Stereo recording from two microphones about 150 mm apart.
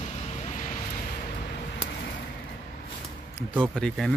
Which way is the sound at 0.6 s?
55° left (ahead or behind).